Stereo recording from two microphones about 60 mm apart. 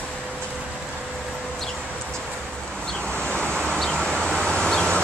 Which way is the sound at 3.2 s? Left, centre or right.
Left.